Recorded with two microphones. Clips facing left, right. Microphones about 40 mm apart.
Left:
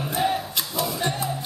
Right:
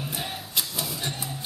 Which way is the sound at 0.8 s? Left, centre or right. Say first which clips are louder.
Left 7 dB; centre.